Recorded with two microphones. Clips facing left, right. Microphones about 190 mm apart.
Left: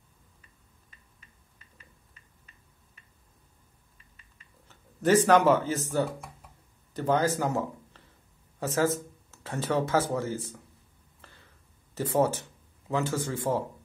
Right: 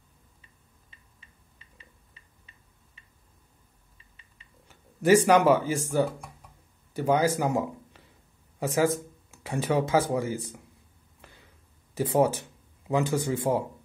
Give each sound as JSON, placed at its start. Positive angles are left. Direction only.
{"t": 4.6, "sound": "speech", "side_deg": -10}
{"t": 11.9, "sound": "speech", "side_deg": -15}